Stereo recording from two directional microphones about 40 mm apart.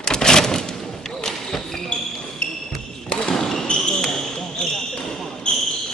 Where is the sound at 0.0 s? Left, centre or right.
Centre.